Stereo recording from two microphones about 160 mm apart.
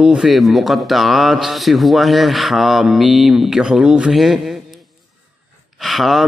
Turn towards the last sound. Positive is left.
turn(degrees=0)  # may be behind; listen again after turning